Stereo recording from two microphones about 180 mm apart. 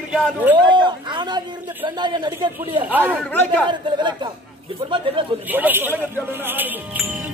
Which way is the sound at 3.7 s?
25° right (ahead or behind).